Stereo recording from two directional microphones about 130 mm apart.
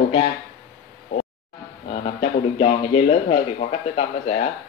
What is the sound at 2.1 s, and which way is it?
Speech, 45° left (ahead or behind).